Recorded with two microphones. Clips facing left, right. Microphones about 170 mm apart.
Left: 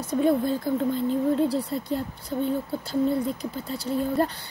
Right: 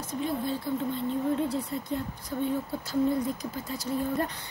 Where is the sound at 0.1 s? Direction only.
55° left (ahead or behind).